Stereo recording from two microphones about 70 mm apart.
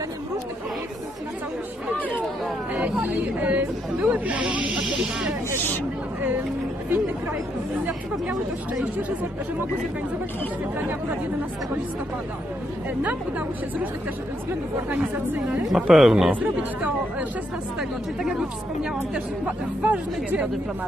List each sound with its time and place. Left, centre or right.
2.7 s speech: right; by 5.3 s centre
14.9 s speech: right
15.7 s speech: centre
16.3 s speech: right
17.7 s speech: centre
19.1 s speech: centre